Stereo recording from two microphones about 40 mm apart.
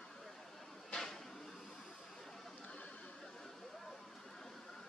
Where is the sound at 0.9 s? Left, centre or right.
Centre.